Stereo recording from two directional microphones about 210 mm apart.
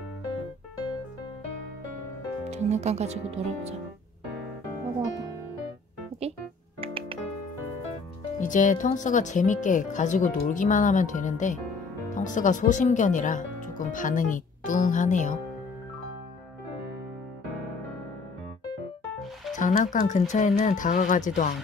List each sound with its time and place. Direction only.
2.5 s speech: 30° right (ahead or behind)
6.2 s keyboard: 30° right (ahead or behind)
6.8 s music: 25° right (ahead or behind)
8.4 s speech: 35° left (ahead or behind)
19.5 s speech: 35° left (ahead or behind)